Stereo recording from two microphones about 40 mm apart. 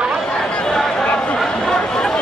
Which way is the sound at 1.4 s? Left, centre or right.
Centre.